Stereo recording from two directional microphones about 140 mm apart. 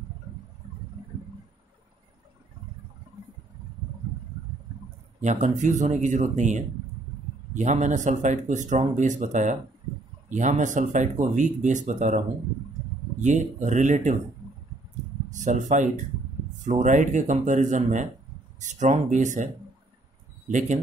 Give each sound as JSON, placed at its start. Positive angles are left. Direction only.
{"t": 5.2, "sound": "speech", "side_deg": -55}
{"t": 13.2, "sound": "speech", "side_deg": -60}
{"t": 15.3, "sound": "speech", "side_deg": -60}